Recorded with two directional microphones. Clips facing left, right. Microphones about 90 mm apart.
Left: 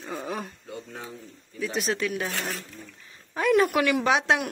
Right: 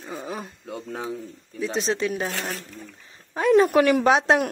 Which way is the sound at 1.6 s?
25° right (ahead or behind).